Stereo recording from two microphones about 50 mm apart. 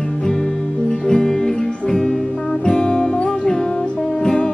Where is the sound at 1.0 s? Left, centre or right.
Centre.